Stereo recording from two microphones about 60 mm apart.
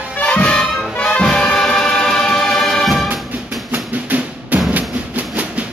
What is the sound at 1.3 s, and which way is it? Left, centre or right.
Music, centre.